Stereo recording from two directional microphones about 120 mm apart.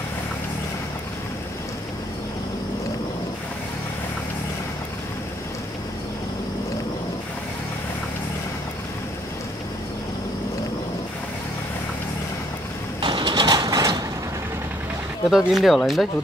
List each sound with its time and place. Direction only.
13.0 s mechanisms: 40° right (ahead or behind)
15.2 s speech: centre (ahead or behind)